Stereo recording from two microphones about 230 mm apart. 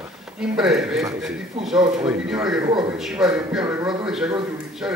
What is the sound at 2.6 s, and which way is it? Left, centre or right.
Speech, centre.